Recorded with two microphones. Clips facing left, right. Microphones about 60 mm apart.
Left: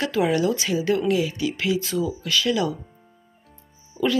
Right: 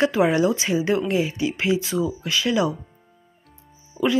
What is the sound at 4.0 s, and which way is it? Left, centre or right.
Speech, centre.